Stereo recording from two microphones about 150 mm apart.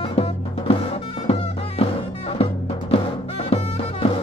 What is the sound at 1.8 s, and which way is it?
Music, 40° left (ahead or behind).